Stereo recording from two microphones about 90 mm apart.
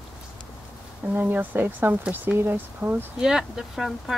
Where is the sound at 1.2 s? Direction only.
20° right (ahead or behind).